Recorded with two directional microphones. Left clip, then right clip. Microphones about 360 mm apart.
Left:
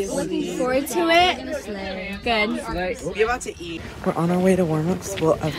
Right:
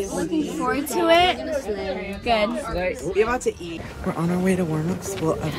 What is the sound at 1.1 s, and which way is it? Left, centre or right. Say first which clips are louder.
Speech: even; centre.